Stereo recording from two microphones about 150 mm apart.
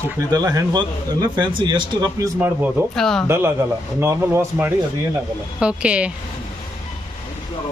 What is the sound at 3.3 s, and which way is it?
Speech, 15° right (ahead or behind).